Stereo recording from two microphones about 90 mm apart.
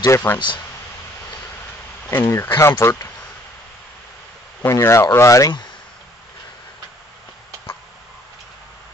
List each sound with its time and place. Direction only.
0.1 s speech: 25° left (ahead or behind)
2.0 s speech: 25° left (ahead or behind)
4.6 s speech: 30° left (ahead or behind)